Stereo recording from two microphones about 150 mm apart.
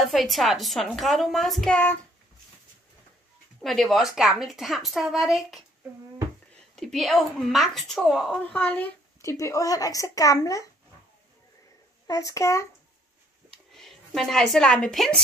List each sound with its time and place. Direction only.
0.0 s a woman's voice: centre (ahead or behind)
3.6 s a woman's voice: centre (ahead or behind)
6.7 s a woman's voice: centre (ahead or behind)
8.5 s a woman's voice: 10° left (ahead or behind)
12.1 s a woman's voice: 20° left (ahead or behind)
13.5 s a sound: 5° left (ahead or behind)